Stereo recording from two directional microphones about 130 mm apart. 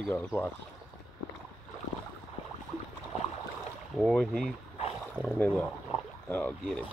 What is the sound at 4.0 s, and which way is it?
Speech, centre (ahead or behind).